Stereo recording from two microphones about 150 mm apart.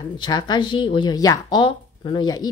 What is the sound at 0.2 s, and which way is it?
Speech, 30° left (ahead or behind).